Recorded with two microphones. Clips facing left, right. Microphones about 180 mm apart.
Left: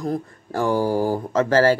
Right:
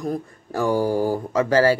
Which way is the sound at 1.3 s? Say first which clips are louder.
Left 1 dB; 45° left (ahead or behind).